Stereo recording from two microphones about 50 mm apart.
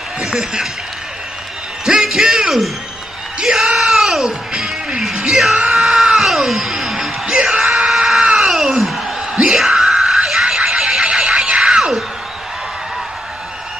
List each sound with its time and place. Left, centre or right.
0.2 s speech: centre
1.9 s speech: centre
3.3 s music: centre
5.1 s yell: centre
5.6 s music: centre
7.3 s yell: centre
8.2 s a sound: centre
9.3 s music: centre
9.8 s neigh: centre